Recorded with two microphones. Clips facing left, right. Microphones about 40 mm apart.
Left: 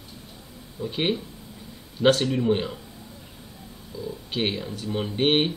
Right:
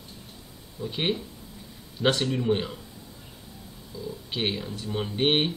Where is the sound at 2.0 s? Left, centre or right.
Left.